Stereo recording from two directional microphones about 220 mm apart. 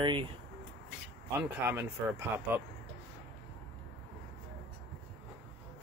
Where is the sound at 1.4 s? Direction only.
10° right (ahead or behind).